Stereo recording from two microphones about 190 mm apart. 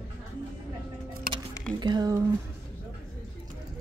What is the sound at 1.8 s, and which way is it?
Speech, 20° right (ahead or behind).